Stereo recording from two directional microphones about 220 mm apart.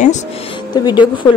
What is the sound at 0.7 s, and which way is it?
Speech, 20° left (ahead or behind).